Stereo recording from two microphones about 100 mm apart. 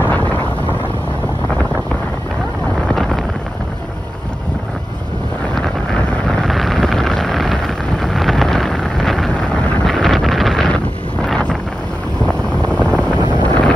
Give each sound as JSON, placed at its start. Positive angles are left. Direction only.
{"t": 0.0, "sound": "vehicle", "side_deg": 15}
{"t": 2.9, "sound": "a sound", "side_deg": 5}
{"t": 5.5, "sound": "vehicle", "side_deg": 10}
{"t": 11.2, "sound": "wind noise", "side_deg": 10}
{"t": 13.2, "sound": "wind noise", "side_deg": 50}
{"t": 13.5, "sound": "wind noise", "side_deg": 10}